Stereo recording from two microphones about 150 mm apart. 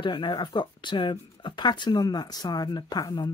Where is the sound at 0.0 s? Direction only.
30° left (ahead or behind).